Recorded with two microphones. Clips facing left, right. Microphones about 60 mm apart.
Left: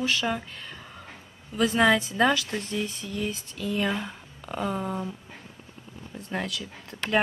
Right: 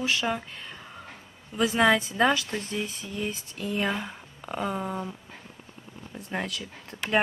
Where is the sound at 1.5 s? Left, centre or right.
Centre.